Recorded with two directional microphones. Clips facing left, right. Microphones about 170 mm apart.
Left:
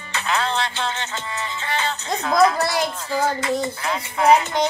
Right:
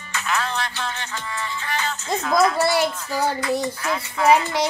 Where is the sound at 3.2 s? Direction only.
25° left (ahead or behind).